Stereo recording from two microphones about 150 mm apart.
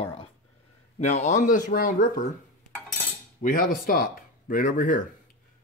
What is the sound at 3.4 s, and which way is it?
Speech, 70° left (ahead or behind).